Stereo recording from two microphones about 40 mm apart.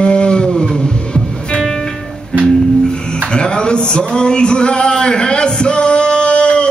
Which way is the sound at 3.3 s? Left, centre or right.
Left.